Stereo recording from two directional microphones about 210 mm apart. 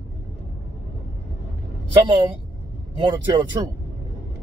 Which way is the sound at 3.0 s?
20° right (ahead or behind).